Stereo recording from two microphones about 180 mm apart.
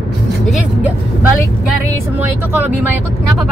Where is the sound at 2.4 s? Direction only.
10° right (ahead or behind).